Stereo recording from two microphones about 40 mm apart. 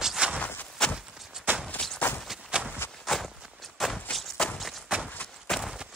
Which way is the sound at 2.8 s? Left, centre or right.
Left.